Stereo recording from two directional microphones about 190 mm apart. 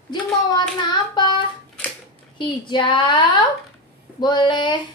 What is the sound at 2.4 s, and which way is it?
A woman's voice, 25° left (ahead or behind).